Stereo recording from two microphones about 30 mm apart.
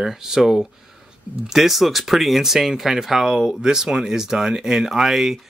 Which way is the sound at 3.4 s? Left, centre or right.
Right.